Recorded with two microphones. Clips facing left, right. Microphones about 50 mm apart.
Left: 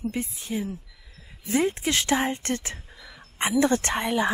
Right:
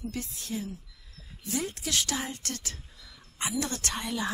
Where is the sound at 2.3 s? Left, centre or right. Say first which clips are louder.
Left 9 dB; left.